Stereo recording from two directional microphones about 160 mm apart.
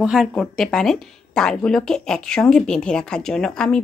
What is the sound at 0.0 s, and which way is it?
Speech, centre (ahead or behind).